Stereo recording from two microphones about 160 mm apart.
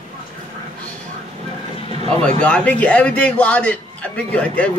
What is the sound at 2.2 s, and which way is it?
A man's voice, 5° left (ahead or behind).